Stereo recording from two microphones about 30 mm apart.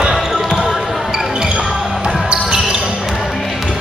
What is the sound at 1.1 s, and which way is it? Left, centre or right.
Basketball bounce, right.